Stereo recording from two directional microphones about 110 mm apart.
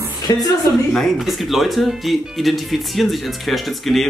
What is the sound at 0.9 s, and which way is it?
Speech, centre (ahead or behind).